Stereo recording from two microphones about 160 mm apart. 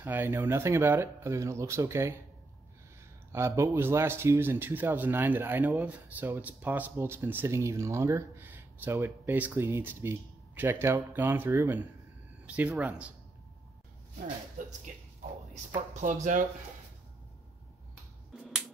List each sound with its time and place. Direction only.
0.0 s speech: 15° right (ahead or behind)
3.3 s speech: 15° right (ahead or behind)
14.6 s speech: 55° right (ahead or behind)
15.9 s speech: 50° right (ahead or behind)
18.3 s finger snapping: centre (ahead or behind)